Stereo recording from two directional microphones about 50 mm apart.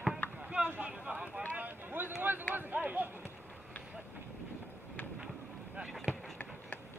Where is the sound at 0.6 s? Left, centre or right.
Right.